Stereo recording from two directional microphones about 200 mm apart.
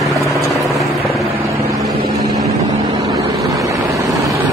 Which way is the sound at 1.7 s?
15° right (ahead or behind).